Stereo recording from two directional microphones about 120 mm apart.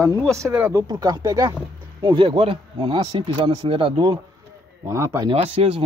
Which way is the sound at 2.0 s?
40° right (ahead or behind).